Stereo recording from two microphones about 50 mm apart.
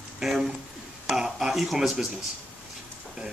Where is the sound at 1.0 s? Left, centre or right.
Centre.